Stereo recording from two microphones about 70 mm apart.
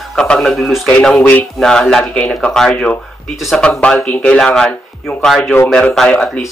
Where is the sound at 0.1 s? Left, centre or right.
Centre.